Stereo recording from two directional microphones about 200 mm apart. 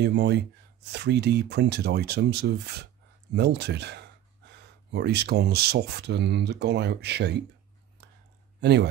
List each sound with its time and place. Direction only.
0.0 s speech: 60° right (ahead or behind)
8.0 s a sound: 55° right (ahead or behind)
8.5 s speech: 55° right (ahead or behind)